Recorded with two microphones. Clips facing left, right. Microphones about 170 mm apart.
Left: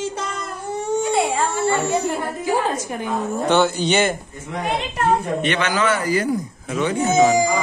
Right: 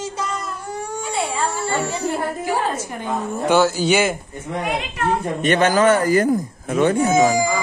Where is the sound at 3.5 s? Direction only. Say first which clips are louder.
Right 2 dB; 5° right (ahead or behind).